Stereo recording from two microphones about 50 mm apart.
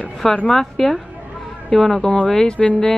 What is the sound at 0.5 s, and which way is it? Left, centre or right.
Speech, centre.